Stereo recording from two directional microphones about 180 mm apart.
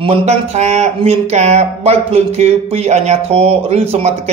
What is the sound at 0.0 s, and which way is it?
A man's voice, 35° right (ahead or behind).